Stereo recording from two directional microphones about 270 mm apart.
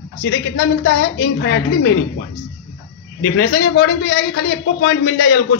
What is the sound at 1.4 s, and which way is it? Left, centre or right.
Speech, left.